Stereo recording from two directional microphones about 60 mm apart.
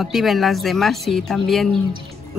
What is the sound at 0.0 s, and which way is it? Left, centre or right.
Speech, centre.